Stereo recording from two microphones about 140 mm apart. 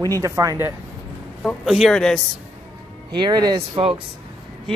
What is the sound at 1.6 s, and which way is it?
Speech, centre (ahead or behind).